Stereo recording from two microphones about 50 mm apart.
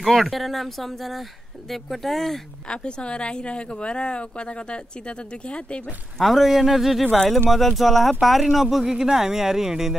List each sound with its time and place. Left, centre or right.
0.0 s speech: centre
2.7 s a woman's voice: centre
6.1 s speech: centre